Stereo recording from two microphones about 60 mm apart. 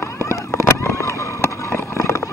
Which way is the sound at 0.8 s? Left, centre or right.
Left.